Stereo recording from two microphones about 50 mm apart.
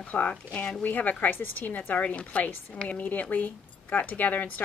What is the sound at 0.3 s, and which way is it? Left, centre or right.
Speech, centre.